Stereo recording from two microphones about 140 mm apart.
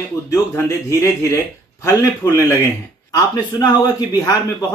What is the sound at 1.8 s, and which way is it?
Speech, 20° left (ahead or behind).